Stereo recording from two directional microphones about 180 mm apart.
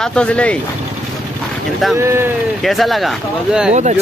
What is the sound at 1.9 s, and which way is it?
Speech, 15° right (ahead or behind).